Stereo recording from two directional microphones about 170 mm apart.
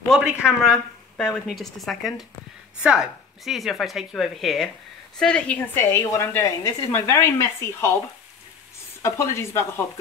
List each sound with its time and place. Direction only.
0.1 s a woman's voice: 5° right (ahead or behind); by 7.9 s 15° left (ahead or behind)
9.0 s a woman's voice: 15° left (ahead or behind)